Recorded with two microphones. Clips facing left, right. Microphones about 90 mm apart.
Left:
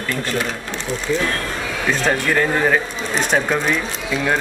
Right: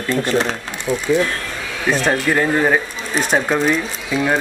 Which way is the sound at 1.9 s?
15° right (ahead or behind).